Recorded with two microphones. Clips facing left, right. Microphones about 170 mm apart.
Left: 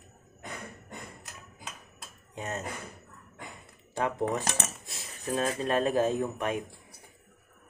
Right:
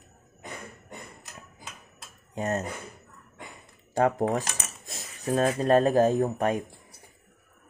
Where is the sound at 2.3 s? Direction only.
40° right (ahead or behind).